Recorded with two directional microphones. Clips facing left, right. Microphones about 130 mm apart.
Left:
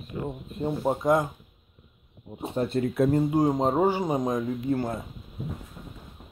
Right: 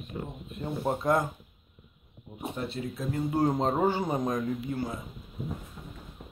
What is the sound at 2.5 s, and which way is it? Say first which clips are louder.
Speech: left 11 dB; 50° left (ahead or behind).